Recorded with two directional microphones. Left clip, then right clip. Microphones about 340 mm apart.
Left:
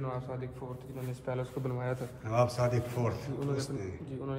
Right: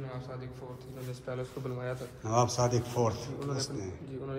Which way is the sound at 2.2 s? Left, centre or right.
Centre.